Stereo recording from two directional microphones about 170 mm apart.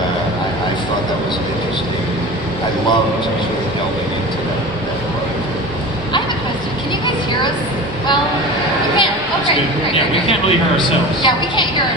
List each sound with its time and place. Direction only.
10.8 s a woman's voice: 25° left (ahead or behind)